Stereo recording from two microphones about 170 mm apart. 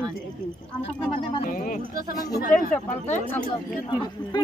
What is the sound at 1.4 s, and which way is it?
Speech, 55° left (ahead or behind).